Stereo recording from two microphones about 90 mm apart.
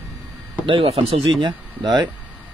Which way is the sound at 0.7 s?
90° right.